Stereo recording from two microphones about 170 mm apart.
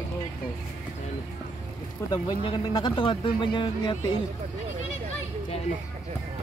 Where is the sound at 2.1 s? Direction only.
30° left (ahead or behind).